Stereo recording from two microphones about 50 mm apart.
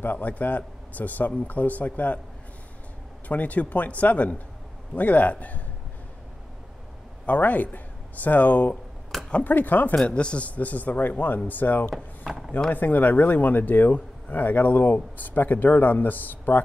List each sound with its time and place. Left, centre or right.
0.0 s a man's voice: left
3.3 s a man's voice: left
7.2 s a man's voice: left
9.9 s a man's voice: left
12.4 s speech: centre
12.7 s a man's voice: left